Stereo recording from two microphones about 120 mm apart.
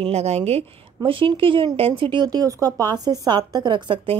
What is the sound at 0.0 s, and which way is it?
A woman's voice, 60° right (ahead or behind).